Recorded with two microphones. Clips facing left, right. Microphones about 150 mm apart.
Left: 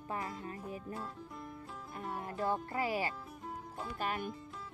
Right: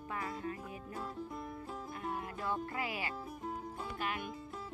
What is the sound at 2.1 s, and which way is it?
Music, 35° left (ahead or behind).